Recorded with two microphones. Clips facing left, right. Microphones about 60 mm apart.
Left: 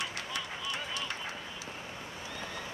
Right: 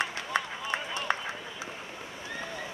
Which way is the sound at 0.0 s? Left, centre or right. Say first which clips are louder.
Right 7 dB; right.